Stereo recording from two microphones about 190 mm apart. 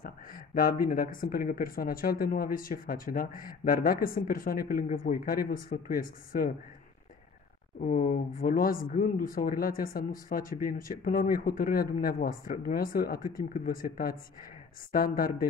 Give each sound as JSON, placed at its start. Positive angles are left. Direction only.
{"t": 0.0, "sound": "speech", "side_deg": 50}
{"t": 7.8, "sound": "speech", "side_deg": 45}